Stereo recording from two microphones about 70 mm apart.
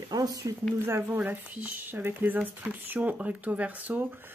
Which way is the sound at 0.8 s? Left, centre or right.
Right.